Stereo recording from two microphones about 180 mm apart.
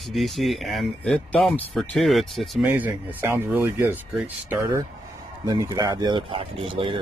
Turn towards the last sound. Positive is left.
turn(degrees=-30)  # may be behind; listen again after turning